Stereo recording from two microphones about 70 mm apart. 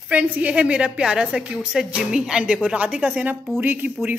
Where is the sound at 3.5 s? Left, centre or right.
Right.